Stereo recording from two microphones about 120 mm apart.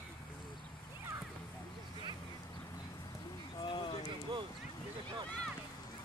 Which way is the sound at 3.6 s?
40° left (ahead or behind).